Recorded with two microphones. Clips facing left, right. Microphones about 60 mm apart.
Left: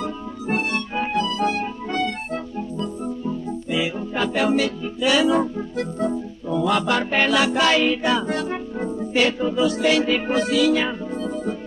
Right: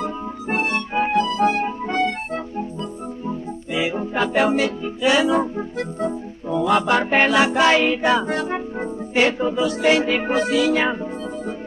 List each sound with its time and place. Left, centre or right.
0.0 s music: right